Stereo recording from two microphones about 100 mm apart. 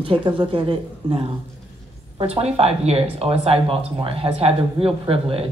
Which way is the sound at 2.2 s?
80° right.